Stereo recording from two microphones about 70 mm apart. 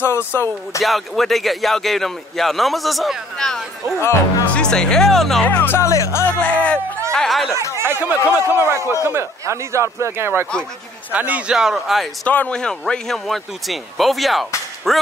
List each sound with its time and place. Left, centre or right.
0.0 s speech: left
0.8 s speech: centre
4.0 s speech: left
4.5 s speech: centre
5.4 s speech: left
5.8 s speech: left
6.3 s speech: centre
7.2 s speech: centre
7.7 s a man's voice: right
11.1 s speech: right
11.5 s speech: centre
12.3 s speech: left
12.5 s speech: centre